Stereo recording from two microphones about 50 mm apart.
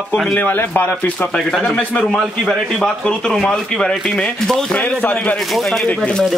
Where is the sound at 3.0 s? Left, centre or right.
Centre.